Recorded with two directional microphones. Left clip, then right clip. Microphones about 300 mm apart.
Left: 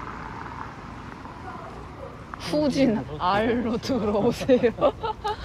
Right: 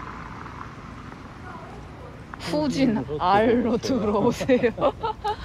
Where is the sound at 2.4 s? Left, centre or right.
Centre.